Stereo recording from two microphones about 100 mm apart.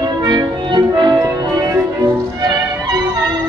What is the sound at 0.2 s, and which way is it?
Music, 45° right (ahead or behind).